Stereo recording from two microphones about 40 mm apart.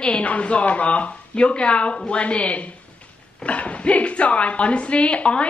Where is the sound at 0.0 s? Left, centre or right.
Left.